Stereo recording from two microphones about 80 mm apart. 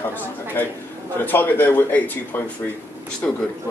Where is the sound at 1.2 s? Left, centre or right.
Left.